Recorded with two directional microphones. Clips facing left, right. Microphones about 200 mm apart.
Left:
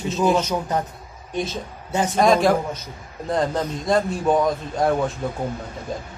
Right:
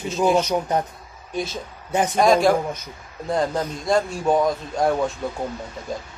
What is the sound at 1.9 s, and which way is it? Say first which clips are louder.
Speech: right 1 dB; 15° right (ahead or behind).